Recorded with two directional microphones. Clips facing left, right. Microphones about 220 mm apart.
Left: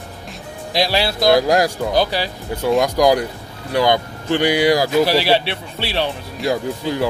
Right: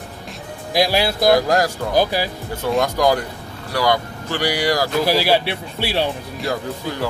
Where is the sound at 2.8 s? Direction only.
15° left (ahead or behind).